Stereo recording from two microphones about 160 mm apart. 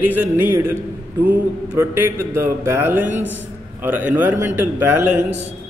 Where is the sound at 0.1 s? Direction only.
10° right (ahead or behind).